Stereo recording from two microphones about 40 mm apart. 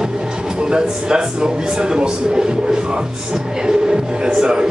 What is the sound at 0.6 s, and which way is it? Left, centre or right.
A man's voice, right.